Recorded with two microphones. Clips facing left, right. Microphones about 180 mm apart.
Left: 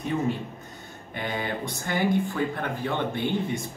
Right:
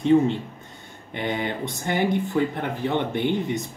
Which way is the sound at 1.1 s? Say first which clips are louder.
Right 3 dB; 20° right (ahead or behind).